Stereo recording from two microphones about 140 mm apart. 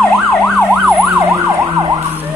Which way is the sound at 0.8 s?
10° right (ahead or behind).